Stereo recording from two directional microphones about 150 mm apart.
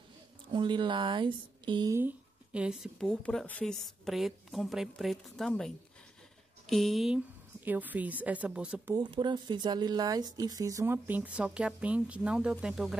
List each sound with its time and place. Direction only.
0.5 s speech: 30° right (ahead or behind)
2.0 s speech: 10° right (ahead or behind)
6.7 s speech: centre (ahead or behind)
7.6 s speech: 10° right (ahead or behind)
8.9 s speech: 30° right (ahead or behind); by 12.9 s 5° right (ahead or behind)